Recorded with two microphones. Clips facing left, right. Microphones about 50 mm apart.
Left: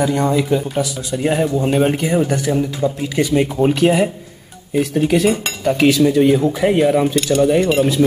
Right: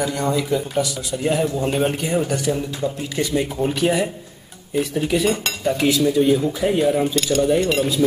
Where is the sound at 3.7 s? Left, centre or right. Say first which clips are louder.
Left 4 dB; left.